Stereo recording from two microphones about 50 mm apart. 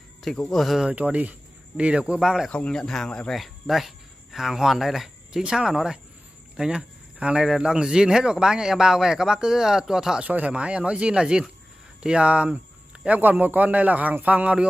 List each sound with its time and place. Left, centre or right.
0.5 s speech: centre
0.8 s speech: right
2.1 s speech: centre
2.7 s speech: centre
3.3 s speech: centre; by 7.4 s right
7.4 s speech: centre
10.2 s speech: right